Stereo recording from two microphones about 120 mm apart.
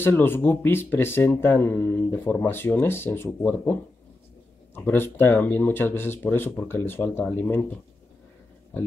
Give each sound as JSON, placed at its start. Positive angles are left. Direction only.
{"t": 0.0, "sound": "speech", "side_deg": 20}
{"t": 4.7, "sound": "speech", "side_deg": 15}